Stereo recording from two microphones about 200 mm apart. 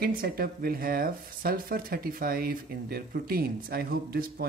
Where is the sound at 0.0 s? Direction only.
50° right (ahead or behind).